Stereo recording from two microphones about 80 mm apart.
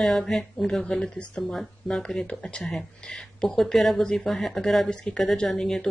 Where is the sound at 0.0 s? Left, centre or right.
Centre.